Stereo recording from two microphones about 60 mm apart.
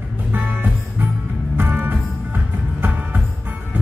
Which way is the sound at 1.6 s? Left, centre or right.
Right.